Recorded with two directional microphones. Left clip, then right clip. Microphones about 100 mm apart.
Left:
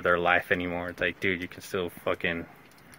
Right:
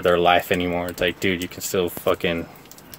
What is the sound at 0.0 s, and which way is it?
Speech, 10° right (ahead or behind).